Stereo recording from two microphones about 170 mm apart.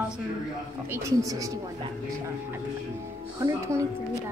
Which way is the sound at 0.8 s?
15° right (ahead or behind).